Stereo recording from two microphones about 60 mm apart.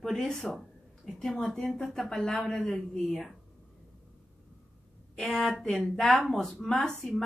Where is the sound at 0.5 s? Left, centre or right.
Centre.